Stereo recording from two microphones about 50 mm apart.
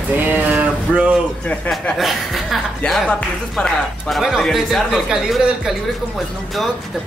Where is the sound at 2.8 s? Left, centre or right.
Centre.